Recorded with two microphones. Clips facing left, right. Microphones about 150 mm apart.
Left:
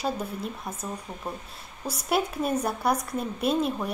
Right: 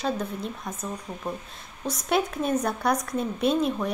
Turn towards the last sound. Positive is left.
turn(degrees=5)  # may be behind; listen again after turning